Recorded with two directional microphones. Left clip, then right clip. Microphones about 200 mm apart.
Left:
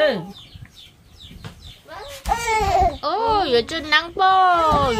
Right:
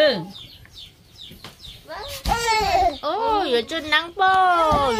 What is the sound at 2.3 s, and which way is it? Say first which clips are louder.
Speech: left 1 dB; 5° left (ahead or behind).